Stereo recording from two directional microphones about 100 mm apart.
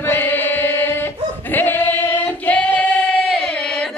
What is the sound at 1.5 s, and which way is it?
Singing, 20° left (ahead or behind).